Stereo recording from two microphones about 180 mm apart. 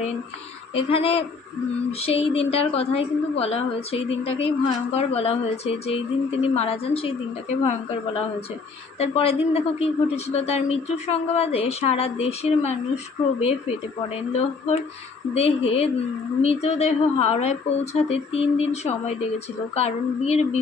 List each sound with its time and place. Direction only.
0.7 s a woman's voice: 30° left (ahead or behind)
8.9 s a woman's voice: 35° left (ahead or behind)